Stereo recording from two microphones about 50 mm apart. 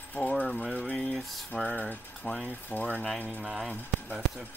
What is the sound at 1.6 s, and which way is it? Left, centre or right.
Speech, left.